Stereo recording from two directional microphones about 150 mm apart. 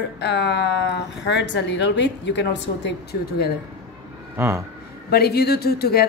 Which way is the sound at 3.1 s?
90° left.